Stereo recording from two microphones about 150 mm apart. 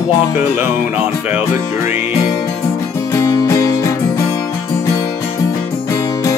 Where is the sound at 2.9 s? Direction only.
20° left (ahead or behind).